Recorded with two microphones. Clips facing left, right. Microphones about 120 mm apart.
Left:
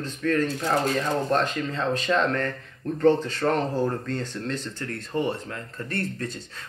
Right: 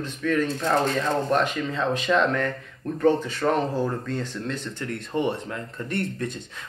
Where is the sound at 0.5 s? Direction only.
10° left (ahead or behind).